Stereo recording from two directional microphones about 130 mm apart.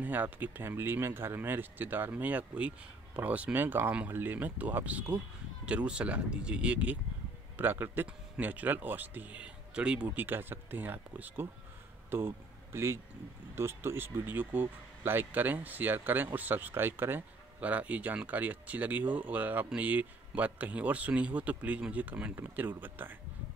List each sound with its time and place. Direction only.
0.0 s speech: 15° right (ahead or behind)